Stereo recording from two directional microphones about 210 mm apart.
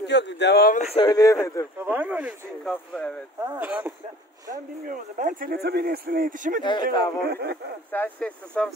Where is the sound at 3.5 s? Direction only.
5° right (ahead or behind).